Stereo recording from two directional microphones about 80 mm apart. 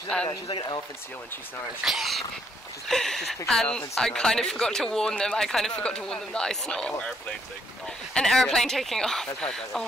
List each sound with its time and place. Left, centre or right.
0.1 s speech: centre
0.5 s speech: left
1.9 s speech: centre